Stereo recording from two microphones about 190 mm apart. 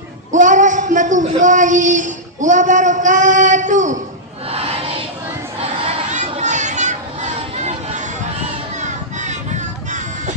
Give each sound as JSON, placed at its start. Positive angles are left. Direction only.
{"t": 0.3, "sound": "speech", "side_deg": -40}
{"t": 4.5, "sound": "a sound", "side_deg": -30}
{"t": 8.8, "sound": "music", "side_deg": -40}